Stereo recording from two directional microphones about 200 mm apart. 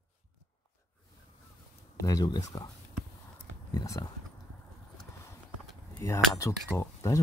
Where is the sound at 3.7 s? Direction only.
20° left (ahead or behind).